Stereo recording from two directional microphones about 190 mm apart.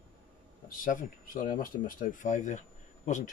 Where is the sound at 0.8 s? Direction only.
45° left (ahead or behind).